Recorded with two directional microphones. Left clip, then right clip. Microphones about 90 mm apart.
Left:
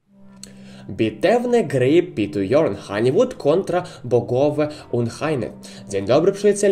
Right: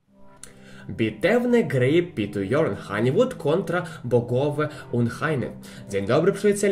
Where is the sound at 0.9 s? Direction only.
45° left (ahead or behind).